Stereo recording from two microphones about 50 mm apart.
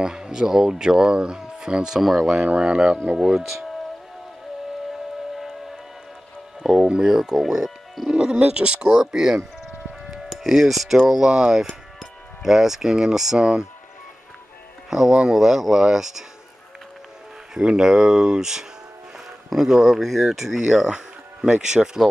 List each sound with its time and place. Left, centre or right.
0.0 s speech: centre
2.0 s speech: centre
2.3 s speech: centre
6.6 s speech: centre
8.1 s speech: centre
14.9 s speech: centre
17.6 s speech: centre
20.7 s music: centre
21.5 s speech: centre